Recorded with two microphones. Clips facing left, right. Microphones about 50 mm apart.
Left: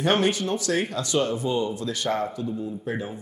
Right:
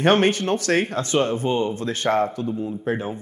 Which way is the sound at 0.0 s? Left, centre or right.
Right.